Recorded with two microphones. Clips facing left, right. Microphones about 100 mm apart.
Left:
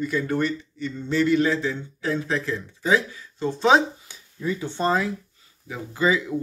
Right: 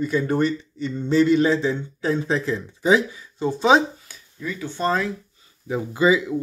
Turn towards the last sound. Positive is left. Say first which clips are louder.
# right 4 dB
turn(degrees=-10)  # may be behind; listen again after turning